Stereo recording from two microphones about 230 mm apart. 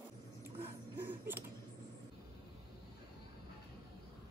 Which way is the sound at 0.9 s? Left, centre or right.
Centre.